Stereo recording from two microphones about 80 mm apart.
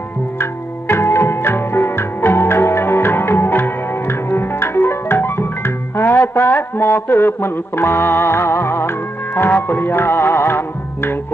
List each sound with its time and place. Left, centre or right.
0.4 s music: left